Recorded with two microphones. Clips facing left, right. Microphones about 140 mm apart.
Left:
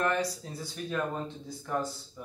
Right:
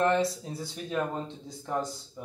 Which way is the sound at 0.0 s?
25° right (ahead or behind).